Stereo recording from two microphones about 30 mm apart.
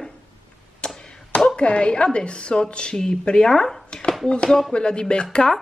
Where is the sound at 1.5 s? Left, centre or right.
Left.